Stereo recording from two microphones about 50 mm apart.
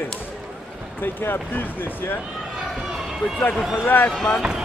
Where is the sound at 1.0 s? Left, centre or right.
Left.